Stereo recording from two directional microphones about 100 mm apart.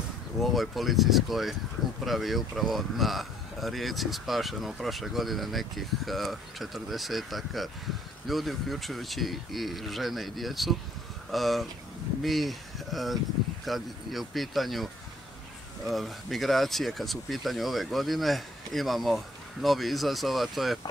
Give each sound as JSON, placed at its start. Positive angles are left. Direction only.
{"t": 0.4, "sound": "speech", "side_deg": 0}